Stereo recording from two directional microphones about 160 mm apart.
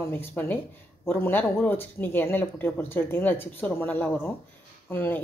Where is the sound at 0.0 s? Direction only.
15° left (ahead or behind).